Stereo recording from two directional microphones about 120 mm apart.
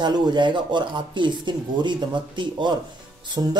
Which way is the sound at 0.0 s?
40° right (ahead or behind).